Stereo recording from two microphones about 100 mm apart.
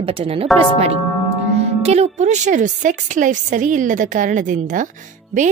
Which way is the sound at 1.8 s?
90° right.